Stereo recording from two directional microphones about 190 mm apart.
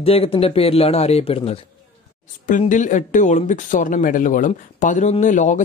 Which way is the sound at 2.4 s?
40° left (ahead or behind).